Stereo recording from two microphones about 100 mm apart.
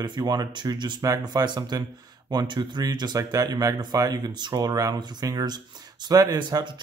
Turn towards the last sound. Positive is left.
turn(degrees=-45)  # may be behind; listen again after turning